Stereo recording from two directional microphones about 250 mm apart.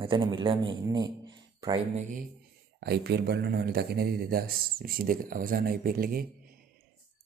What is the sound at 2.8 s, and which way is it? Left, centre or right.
Speech, right.